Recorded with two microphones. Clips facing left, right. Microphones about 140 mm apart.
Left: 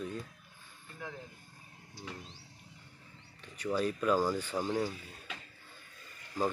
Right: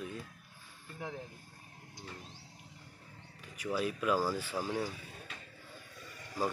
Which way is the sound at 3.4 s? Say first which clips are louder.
Left 2 dB; 10° right (ahead or behind).